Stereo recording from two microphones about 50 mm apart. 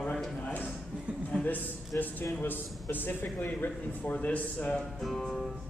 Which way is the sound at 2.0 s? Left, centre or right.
Left.